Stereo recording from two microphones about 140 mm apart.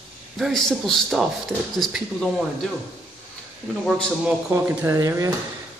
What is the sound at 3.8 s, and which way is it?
Speech, 5° left (ahead or behind).